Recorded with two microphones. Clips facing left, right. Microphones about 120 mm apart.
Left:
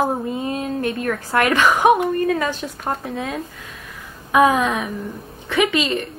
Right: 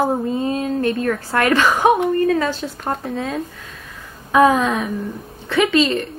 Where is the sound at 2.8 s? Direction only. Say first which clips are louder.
Right 1 dB; centre (ahead or behind).